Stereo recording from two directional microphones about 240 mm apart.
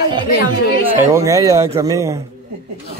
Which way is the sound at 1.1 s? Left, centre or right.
Centre.